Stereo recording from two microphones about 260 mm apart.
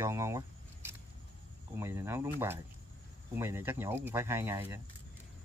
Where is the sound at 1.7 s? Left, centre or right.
Centre.